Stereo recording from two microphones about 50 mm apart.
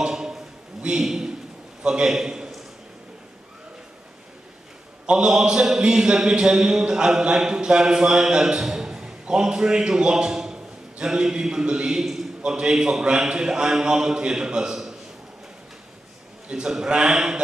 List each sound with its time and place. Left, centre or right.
0.0 s a sound: centre
1.8 s a man's voice: centre
5.0 s speech: centre
16.4 s speech: centre